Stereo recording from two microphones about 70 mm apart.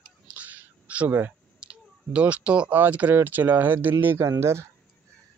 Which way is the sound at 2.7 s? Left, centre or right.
Right.